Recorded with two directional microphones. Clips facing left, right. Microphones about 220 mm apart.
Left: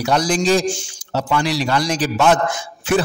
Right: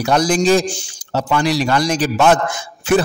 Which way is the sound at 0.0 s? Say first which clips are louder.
Right 3 dB; 50° right (ahead or behind).